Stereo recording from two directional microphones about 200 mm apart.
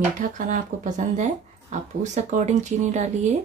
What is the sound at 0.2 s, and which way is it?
Speech, 40° right (ahead or behind).